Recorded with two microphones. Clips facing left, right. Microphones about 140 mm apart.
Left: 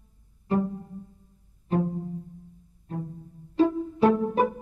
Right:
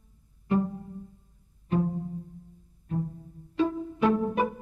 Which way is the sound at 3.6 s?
35° left (ahead or behind).